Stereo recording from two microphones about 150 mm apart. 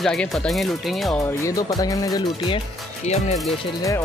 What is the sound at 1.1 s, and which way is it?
Speech, 20° left (ahead or behind).